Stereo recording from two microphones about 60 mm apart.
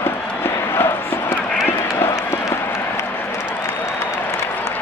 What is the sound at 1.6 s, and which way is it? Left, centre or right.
Run, left.